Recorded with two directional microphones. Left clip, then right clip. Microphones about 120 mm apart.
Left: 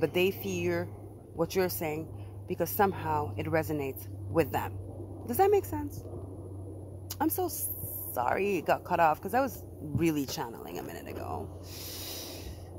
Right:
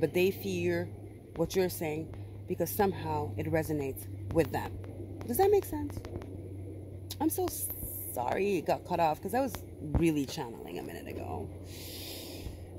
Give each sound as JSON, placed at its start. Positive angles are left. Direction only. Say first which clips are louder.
{"t": 0.0, "sound": "a woman's voice", "louder": "left 1 dB", "side_deg": -30}
{"t": 7.1, "sound": "a woman's voice", "louder": "left 1 dB", "side_deg": -25}